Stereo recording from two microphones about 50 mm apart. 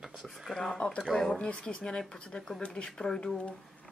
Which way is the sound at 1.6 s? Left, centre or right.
Centre.